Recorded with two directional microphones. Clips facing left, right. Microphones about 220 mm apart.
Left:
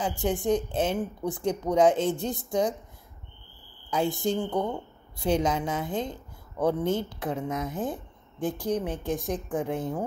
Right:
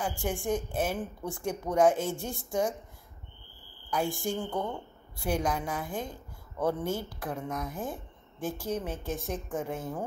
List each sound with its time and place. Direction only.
0.0 s a woman's voice: 20° left (ahead or behind)
3.9 s a woman's voice: 20° left (ahead or behind)